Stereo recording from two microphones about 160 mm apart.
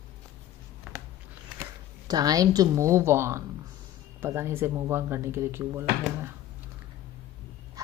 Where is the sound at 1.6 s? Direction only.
25° right (ahead or behind).